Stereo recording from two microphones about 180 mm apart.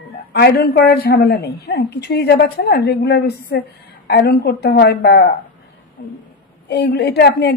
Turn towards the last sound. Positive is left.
turn(degrees=65)  # may be behind; listen again after turning